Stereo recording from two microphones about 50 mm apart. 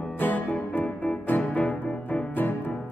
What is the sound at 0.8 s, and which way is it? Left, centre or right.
Music, centre.